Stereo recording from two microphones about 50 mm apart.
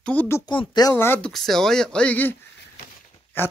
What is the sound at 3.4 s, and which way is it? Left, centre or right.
Dog, left.